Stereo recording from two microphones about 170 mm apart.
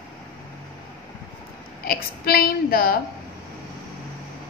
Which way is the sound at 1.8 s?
60° left (ahead or behind).